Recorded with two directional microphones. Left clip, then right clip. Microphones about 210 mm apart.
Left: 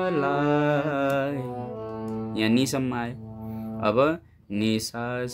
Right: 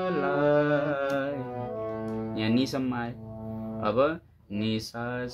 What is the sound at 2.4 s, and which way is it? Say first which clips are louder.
Speech: left 4 dB; 50° left (ahead or behind).